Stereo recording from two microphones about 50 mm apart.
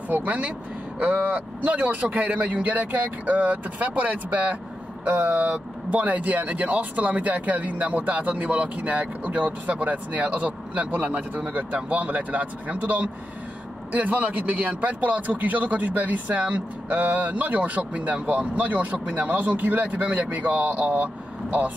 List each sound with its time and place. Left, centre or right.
0.1 s a man's voice: right